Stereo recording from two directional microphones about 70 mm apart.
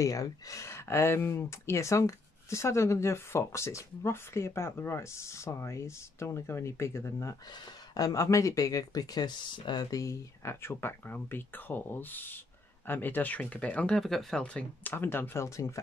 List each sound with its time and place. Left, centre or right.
0.0 s speech: left
7.5 s speech: left
9.9 s speech: left; by 14.0 s centre
14.0 s speech: centre
14.4 s speech: centre
14.9 s speech: left